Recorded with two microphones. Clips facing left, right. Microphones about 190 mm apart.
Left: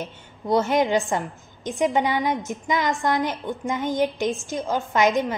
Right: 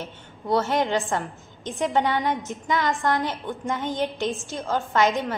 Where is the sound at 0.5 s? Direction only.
15° left (ahead or behind).